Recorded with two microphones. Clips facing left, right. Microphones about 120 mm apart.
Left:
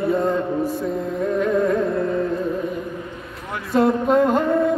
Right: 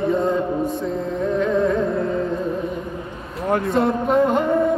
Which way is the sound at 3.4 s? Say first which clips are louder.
Right 12 dB; 45° right (ahead or behind).